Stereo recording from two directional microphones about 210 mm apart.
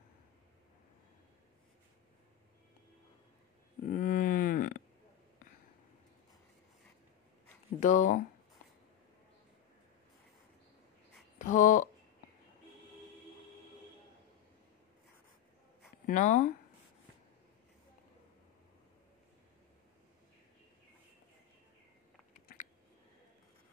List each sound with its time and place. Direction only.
3.8 s a sound: 40° left (ahead or behind)
7.8 s speech: 35° left (ahead or behind)
11.3 s speech: 35° left (ahead or behind)
16.1 s speech: 35° left (ahead or behind)